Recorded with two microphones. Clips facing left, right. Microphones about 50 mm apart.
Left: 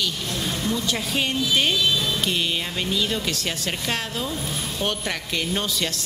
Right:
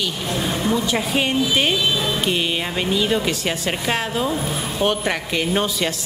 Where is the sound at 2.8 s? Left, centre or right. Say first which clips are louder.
Right 6 dB; centre.